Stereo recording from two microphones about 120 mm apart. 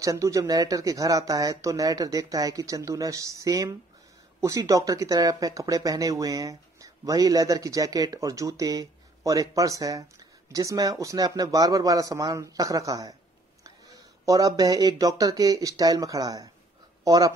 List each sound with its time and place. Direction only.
0.0 s speech: 25° right (ahead or behind)
14.2 s speech: 30° right (ahead or behind)